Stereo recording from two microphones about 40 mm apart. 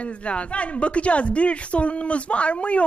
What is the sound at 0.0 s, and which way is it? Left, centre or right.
A woman's voice, left.